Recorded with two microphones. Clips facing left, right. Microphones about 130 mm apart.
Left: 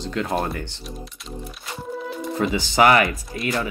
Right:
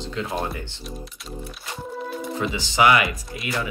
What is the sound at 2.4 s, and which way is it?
Speech, 50° left (ahead or behind).